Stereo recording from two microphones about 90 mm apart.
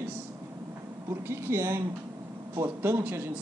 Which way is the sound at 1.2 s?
30° right (ahead or behind).